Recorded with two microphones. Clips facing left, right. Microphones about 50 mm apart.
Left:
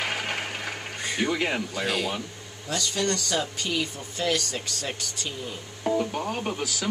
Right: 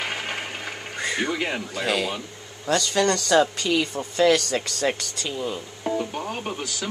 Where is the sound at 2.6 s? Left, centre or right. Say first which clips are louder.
Right 6 dB; right.